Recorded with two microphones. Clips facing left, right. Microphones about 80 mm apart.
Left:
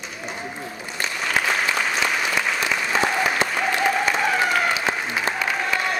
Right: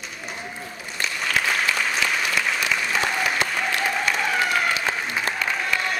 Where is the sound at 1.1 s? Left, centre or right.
Centre.